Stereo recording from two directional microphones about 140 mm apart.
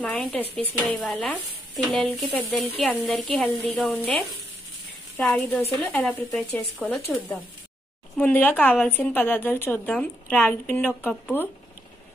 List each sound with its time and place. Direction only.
0.0 s a woman's voice: 10° left (ahead or behind)
5.3 s speech: 15° left (ahead or behind)
8.6 s a woman's voice: centre (ahead or behind)
9.1 s speech: 15° left (ahead or behind)